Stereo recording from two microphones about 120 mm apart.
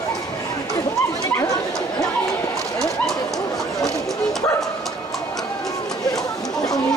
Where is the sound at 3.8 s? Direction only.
Centre (ahead or behind).